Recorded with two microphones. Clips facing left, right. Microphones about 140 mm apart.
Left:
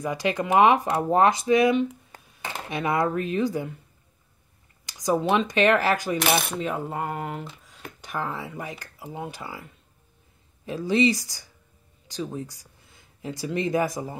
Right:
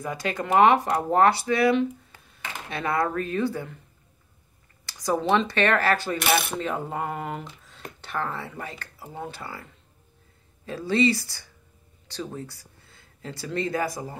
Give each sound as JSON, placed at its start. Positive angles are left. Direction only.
{"t": 0.0, "sound": "speech", "side_deg": 15}
{"t": 4.8, "sound": "speech", "side_deg": 15}
{"t": 6.6, "sound": "speech", "side_deg": 5}